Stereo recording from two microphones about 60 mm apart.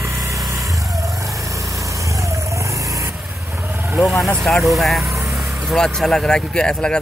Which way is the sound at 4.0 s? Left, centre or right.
Centre.